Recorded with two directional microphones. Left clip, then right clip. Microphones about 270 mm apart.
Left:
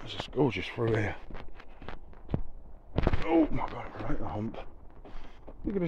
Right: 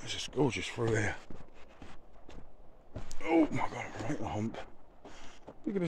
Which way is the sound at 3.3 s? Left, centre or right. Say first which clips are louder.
Left 1 dB; centre.